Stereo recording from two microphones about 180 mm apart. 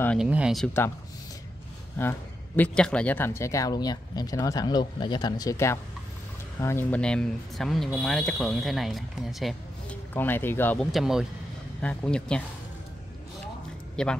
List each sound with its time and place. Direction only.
0.2 s speech: 5° right (ahead or behind)
2.0 s speech: 10° left (ahead or behind)
14.0 s speech: 5° left (ahead or behind)